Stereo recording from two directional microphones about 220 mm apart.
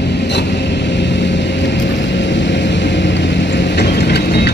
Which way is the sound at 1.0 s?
55° left (ahead or behind).